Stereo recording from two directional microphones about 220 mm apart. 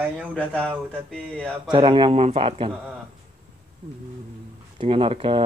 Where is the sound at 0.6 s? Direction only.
5° left (ahead or behind).